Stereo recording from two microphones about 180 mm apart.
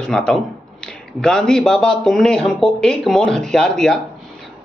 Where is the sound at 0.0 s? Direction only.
5° left (ahead or behind).